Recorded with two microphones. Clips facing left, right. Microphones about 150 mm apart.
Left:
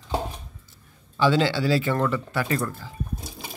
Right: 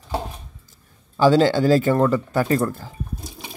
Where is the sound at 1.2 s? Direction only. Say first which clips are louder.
Right 6 dB; 40° right (ahead or behind).